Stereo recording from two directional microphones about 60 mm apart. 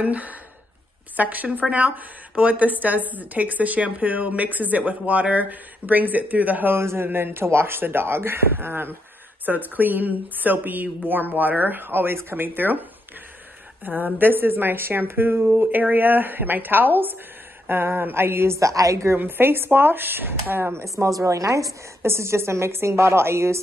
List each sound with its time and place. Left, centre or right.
0.0 s a woman's voice: right
6.8 s a woman's voice: right
13.8 s a woman's voice: right
18.6 s a woman's voice: right
19.1 s a woman's voice: right
20.8 s a woman's voice: right
22.0 s a woman's voice: right